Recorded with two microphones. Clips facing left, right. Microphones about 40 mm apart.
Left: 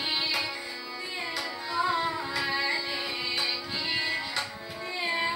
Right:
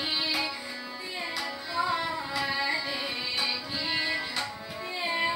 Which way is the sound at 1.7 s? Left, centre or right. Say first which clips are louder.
Left 2 dB; centre.